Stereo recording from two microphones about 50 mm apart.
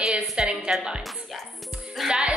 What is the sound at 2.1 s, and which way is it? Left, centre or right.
Speech, centre.